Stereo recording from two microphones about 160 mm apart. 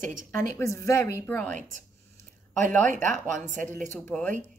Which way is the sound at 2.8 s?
50° right (ahead or behind).